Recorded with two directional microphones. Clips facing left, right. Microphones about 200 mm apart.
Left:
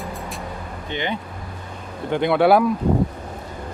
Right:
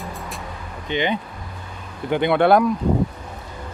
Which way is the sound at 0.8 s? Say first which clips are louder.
Right 4 dB; 20° right (ahead or behind).